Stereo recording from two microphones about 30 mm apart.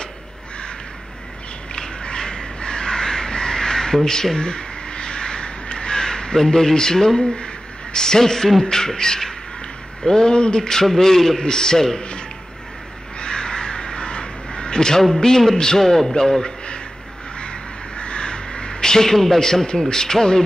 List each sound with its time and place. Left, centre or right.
1.8 s crow: left
4.4 s crow: left
7.9 s a man's voice: left
11.0 s a man's voice: centre
13.2 s crow: left
15.1 s a man's voice: centre
17.4 s crow: left; by 20.4 s centre